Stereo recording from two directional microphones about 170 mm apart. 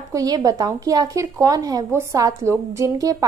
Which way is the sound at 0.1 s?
20° right (ahead or behind).